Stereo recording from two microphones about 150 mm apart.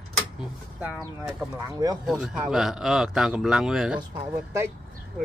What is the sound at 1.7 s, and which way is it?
Speech, 25° right (ahead or behind).